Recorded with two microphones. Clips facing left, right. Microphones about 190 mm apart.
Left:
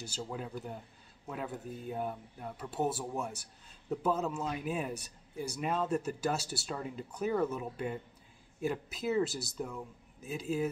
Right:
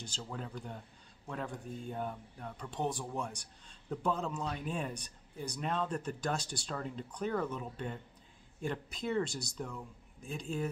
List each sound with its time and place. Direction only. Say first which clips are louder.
0.0 s speech: left 3 dB; 10° left (ahead or behind)